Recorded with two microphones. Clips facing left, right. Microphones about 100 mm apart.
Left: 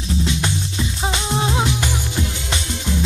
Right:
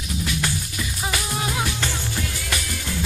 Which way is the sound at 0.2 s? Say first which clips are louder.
Left 2 dB; 25° left (ahead or behind).